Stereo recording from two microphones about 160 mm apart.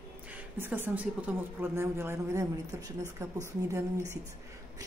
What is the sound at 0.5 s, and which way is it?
A woman's voice, 15° right (ahead or behind).